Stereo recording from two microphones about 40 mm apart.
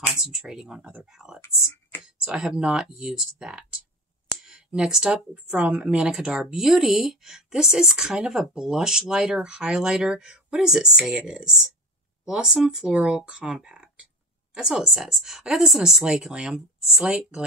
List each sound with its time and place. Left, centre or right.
0.1 s a woman's voice: centre
2.0 s a sound: centre
2.8 s a woman's voice: centre
4.5 s a sound: right
5.0 s speech: right
5.6 s a woman's voice: right
5.9 s a woman's voice: centre
12.6 s speech: right
13.5 s a woman's voice: centre
16.0 s a woman's voice: centre
17.0 s speech: right